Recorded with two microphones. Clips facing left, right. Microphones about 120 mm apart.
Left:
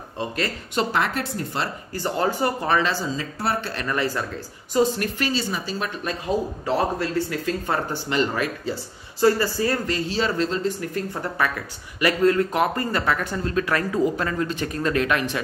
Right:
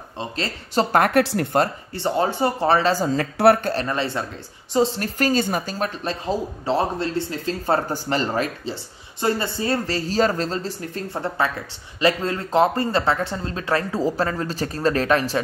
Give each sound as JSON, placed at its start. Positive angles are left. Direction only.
{"t": 0.9, "sound": "speech", "side_deg": -55}
{"t": 1.2, "sound": "speech", "side_deg": -75}
{"t": 2.0, "sound": "speech", "side_deg": -20}
{"t": 3.1, "sound": "speech", "side_deg": -65}
{"t": 3.8, "sound": "speech", "side_deg": -25}
{"t": 6.0, "sound": "speech", "side_deg": -30}
{"t": 11.2, "sound": "speech", "side_deg": -25}